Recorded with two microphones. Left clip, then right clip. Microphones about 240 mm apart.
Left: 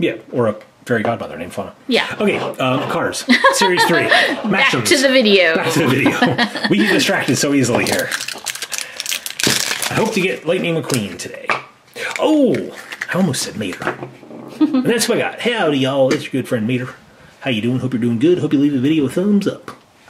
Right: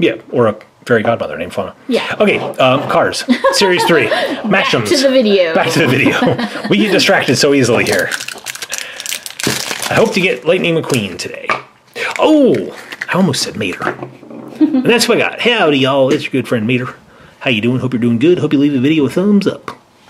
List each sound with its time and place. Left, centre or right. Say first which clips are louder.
0.0 s speech: right 5 dB; centre